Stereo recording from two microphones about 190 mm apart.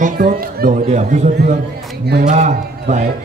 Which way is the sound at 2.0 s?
55° right (ahead or behind).